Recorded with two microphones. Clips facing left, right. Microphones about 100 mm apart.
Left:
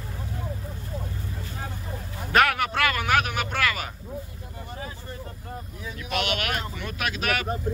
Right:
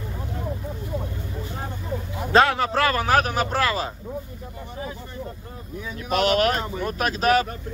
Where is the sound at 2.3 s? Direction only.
25° right (ahead or behind).